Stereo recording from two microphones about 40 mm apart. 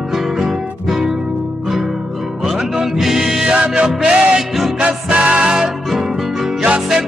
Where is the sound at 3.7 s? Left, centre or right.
Right.